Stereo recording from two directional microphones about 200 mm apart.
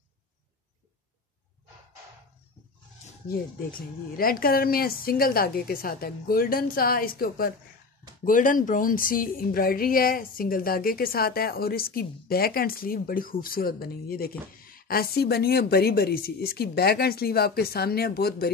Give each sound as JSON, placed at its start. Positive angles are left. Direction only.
{"t": 4.2, "sound": "a woman's voice", "side_deg": 45}